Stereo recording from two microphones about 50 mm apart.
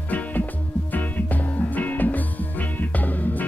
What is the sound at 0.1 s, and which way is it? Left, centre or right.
Music, left.